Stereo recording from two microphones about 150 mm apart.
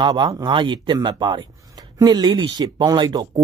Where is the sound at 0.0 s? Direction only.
30° right (ahead or behind).